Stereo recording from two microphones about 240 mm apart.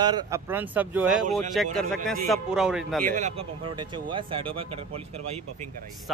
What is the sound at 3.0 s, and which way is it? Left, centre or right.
Speech, right.